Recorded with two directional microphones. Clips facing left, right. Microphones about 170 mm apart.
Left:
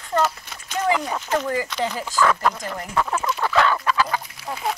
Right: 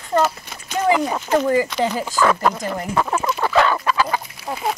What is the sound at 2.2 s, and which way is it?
Speech, 25° right (ahead or behind).